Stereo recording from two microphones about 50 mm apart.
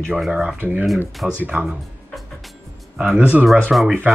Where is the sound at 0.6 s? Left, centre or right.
Right.